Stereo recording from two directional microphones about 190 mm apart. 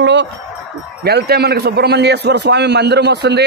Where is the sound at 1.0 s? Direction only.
55° right (ahead or behind).